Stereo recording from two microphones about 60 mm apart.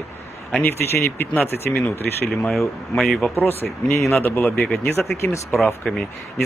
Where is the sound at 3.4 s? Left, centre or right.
Left.